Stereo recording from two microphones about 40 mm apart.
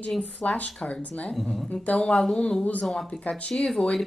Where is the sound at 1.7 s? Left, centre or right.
Left.